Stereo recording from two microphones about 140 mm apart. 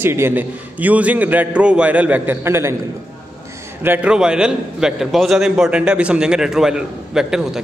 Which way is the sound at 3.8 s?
10° right (ahead or behind).